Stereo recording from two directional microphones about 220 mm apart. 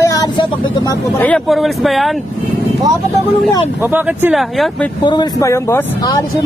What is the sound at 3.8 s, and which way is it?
Speech, 10° right (ahead or behind).